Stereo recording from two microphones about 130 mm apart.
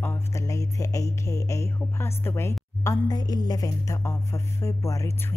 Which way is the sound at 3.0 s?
30° left (ahead or behind).